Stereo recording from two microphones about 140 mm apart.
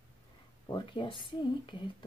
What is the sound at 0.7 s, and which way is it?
Speech, 35° left (ahead or behind).